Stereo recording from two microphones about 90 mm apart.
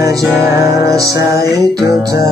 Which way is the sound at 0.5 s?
35° right (ahead or behind).